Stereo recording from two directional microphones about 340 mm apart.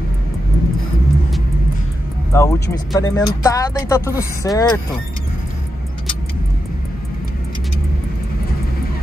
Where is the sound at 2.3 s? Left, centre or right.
Centre.